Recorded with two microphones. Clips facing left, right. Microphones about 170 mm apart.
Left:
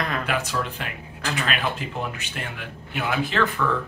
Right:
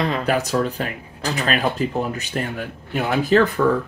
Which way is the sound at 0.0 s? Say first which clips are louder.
Right 6 dB; 35° right (ahead or behind).